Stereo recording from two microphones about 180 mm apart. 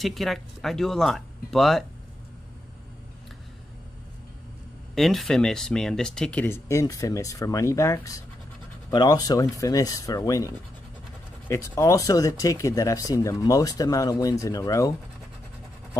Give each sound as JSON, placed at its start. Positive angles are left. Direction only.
{"t": 0.0, "sound": "speech", "side_deg": 0}
{"t": 4.9, "sound": "speech", "side_deg": 0}